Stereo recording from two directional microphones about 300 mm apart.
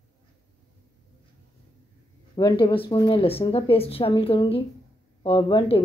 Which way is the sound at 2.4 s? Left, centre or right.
Centre.